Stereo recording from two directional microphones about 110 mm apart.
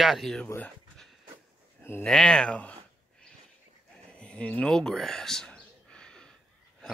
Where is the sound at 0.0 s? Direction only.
Centre (ahead or behind).